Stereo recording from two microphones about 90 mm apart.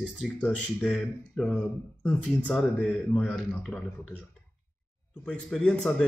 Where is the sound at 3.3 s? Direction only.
5° left (ahead or behind).